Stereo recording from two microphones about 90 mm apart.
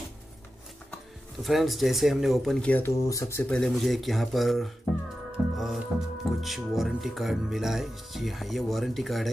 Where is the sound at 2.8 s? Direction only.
35° left (ahead or behind).